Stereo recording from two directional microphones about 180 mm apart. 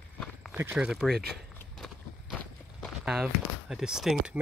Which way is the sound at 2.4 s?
Centre (ahead or behind).